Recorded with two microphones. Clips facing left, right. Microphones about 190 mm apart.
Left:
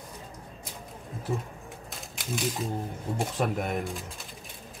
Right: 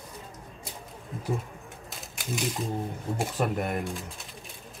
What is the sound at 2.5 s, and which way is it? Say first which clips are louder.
Speech: right 1 dB; 5° right (ahead or behind).